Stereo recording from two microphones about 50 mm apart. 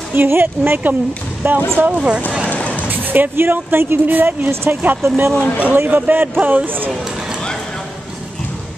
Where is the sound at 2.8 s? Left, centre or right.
Right.